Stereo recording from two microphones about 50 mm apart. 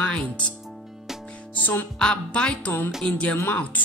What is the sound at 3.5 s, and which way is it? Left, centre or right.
Music, left.